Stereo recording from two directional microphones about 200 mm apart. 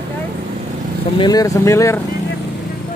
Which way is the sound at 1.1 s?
20° left (ahead or behind).